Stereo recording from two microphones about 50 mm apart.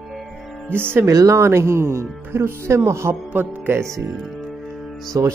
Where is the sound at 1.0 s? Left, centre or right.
Right.